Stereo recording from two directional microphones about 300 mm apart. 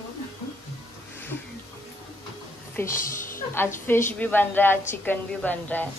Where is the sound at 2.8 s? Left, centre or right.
Centre.